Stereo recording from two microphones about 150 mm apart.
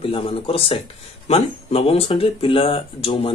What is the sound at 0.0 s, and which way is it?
Speech, 40° left (ahead or behind).